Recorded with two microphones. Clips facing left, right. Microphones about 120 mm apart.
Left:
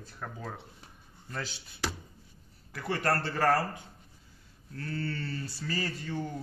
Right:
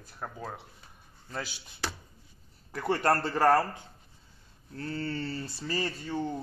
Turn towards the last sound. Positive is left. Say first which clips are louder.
# right 3 dB
turn(degrees=-25)  # may be behind; listen again after turning